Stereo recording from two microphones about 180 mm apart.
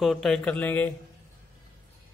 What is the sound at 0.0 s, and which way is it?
Speech, centre (ahead or behind).